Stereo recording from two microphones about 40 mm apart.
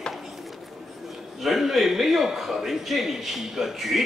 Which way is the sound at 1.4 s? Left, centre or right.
Centre.